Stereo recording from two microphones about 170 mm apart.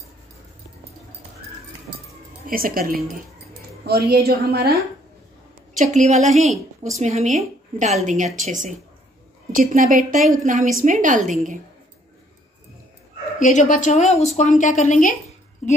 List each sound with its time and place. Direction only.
2.4 s a woman's voice: 55° right (ahead or behind)
5.8 s a woman's voice: 45° right (ahead or behind)
13.4 s a woman's voice: 45° left (ahead or behind)